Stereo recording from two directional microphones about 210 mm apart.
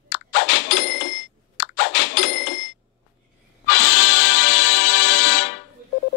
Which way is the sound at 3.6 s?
65° left (ahead or behind).